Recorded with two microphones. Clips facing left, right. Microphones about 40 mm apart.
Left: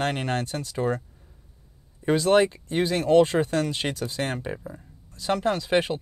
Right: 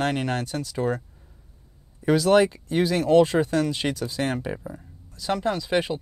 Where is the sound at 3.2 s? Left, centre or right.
Left.